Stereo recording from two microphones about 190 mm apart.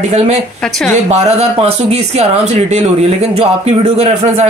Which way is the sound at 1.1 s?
35° right (ahead or behind).